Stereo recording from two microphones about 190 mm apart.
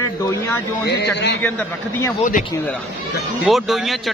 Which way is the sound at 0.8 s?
60° left (ahead or behind).